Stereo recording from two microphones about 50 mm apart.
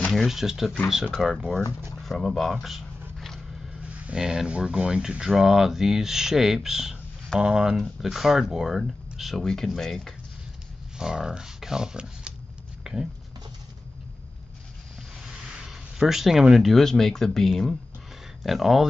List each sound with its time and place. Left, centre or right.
0.3 s speech: centre
1.1 s speech: centre
2.5 s a sound: centre
3.8 s a sound: right
4.2 s speech: centre
4.5 s speech: right
7.7 s speech: centre
9.4 s speech: centre
11.0 s speech: centre
12.9 s a sound: centre
15.4 s speech: centre